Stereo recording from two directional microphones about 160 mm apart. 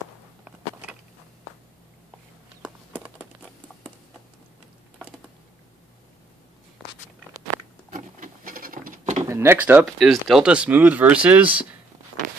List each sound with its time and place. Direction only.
7.9 s patter: 60° right (ahead or behind)
9.2 s speech: 15° right (ahead or behind)